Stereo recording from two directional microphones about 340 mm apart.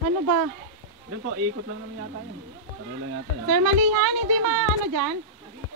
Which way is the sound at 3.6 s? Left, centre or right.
Right.